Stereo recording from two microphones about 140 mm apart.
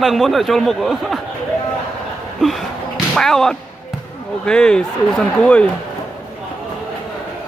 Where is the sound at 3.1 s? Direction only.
5° left (ahead or behind).